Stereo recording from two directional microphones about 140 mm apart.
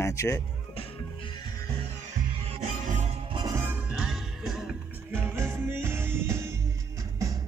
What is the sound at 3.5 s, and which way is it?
Music, 20° right (ahead or behind).